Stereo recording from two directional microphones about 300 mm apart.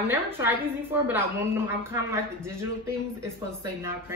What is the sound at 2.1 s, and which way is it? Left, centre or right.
Speech, centre.